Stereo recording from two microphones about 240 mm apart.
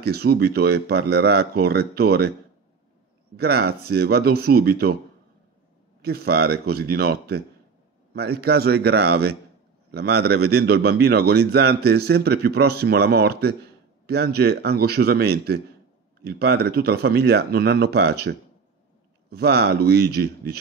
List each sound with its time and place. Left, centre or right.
0.0 s a man's voice: right
3.3 s a man's voice: right
6.0 s a man's voice: right